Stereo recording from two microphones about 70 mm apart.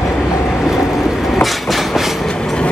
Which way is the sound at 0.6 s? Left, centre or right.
Centre.